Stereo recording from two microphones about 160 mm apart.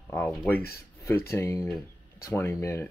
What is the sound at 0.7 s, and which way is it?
Speech, 15° left (ahead or behind).